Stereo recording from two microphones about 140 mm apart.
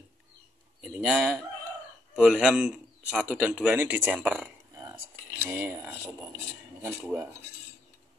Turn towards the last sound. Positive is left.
turn(degrees=-15)  # may be behind; listen again after turning